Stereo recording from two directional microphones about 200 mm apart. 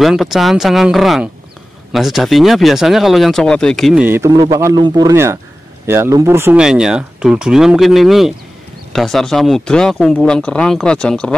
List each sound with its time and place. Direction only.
0.0 s speech: centre (ahead or behind)